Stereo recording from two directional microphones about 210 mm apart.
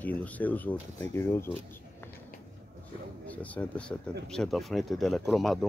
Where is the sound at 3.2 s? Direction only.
5° left (ahead or behind).